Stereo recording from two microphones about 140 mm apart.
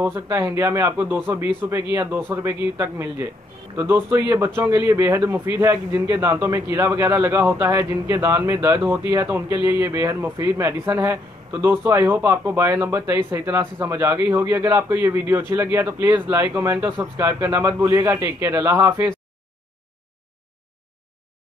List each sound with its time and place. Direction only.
0.0 s a man's voice: 20° right (ahead or behind)